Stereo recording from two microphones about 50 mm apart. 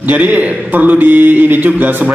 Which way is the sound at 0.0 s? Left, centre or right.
Right.